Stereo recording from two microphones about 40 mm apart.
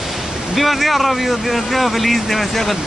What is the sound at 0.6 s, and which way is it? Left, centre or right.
Speech, centre.